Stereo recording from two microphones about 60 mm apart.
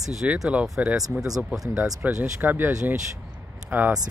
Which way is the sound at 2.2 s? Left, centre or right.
Right.